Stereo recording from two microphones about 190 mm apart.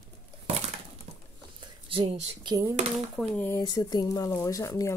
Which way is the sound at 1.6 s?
30° right (ahead or behind).